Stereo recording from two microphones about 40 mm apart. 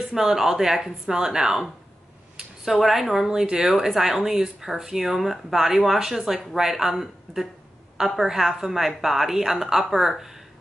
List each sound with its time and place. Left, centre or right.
0.0 s a woman's voice: centre
2.6 s a woman's voice: centre